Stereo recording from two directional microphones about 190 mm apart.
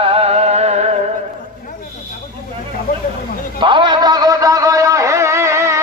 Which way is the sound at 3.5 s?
25° right (ahead or behind).